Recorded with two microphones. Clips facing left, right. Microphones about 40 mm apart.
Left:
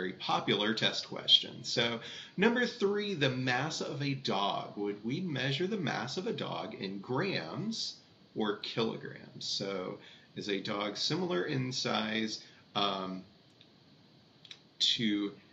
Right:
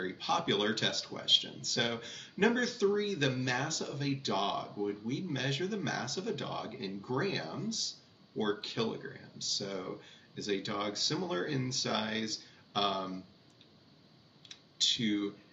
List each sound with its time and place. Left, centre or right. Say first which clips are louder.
0.0 s speech: even; centre
14.5 s computer keyboard: left 1 dB; centre